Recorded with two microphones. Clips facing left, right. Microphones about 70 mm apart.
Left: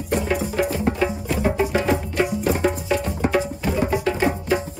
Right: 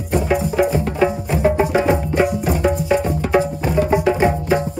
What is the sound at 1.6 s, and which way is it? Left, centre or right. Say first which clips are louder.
Music: right 4 dB; centre.